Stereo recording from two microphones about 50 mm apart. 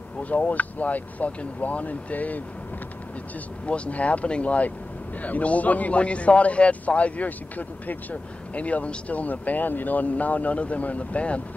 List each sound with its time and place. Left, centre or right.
0.2 s speech: left
3.6 s a man's voice: left